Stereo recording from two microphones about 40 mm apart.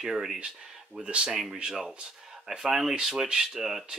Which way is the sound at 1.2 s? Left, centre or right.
Centre.